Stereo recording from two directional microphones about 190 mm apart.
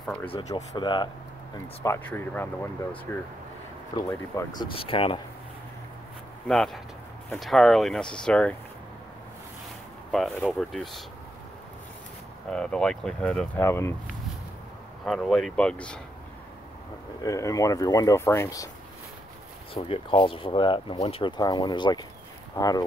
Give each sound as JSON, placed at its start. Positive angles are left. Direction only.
{"t": 0.0, "sound": "speech", "side_deg": 5}
{"t": 0.3, "sound": "speech", "side_deg": 20}
{"t": 1.9, "sound": "speech", "side_deg": 10}
{"t": 6.4, "sound": "speech", "side_deg": 0}
{"t": 10.1, "sound": "speech", "side_deg": 0}
{"t": 12.4, "sound": "speech", "side_deg": 5}
{"t": 15.0, "sound": "speech", "side_deg": 0}
{"t": 17.2, "sound": "speech", "side_deg": 15}
{"t": 19.7, "sound": "speech", "side_deg": 30}